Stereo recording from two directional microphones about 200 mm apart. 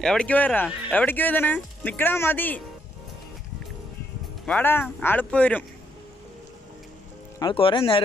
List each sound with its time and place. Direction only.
0.0 s speech: 5° left (ahead or behind)
4.5 s speech: 10° left (ahead or behind)
7.3 s speech: 25° left (ahead or behind)